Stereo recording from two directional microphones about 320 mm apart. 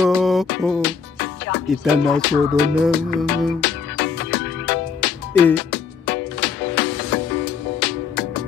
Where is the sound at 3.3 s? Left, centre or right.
Left.